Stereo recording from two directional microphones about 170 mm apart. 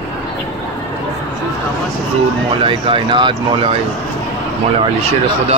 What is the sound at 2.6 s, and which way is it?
Speech, 30° right (ahead or behind).